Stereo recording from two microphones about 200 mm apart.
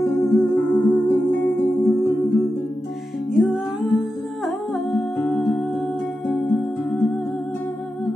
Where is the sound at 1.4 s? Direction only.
15° left (ahead or behind).